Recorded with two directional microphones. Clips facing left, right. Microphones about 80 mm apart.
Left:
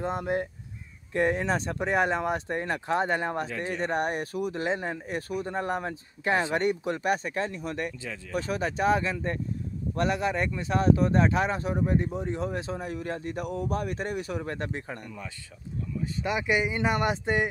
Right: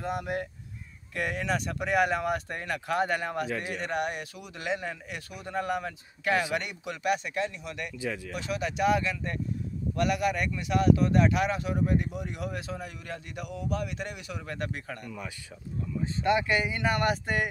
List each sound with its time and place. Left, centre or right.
0.0 s speech: left
16.2 s speech: centre
16.4 s speech: centre